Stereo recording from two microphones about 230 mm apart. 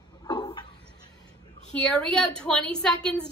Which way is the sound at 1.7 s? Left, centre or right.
Centre.